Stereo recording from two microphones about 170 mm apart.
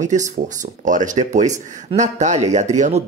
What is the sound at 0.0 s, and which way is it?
Speech, 45° right (ahead or behind).